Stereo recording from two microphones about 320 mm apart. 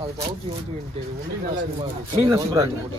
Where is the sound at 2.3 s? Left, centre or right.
Centre.